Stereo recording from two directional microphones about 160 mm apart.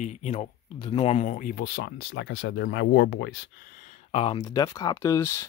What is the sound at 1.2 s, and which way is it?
Speech, 60° left (ahead or behind).